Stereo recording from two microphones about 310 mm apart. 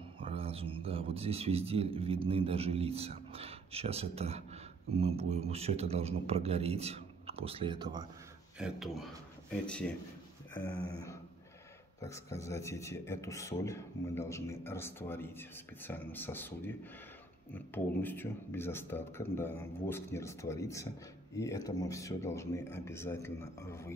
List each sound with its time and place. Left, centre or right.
0.2 s speech: centre
8.5 s a man's voice: centre